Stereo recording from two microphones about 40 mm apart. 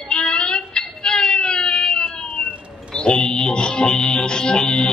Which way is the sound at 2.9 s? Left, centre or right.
Left.